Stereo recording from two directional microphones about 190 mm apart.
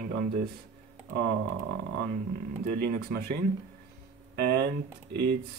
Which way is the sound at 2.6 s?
50° right (ahead or behind).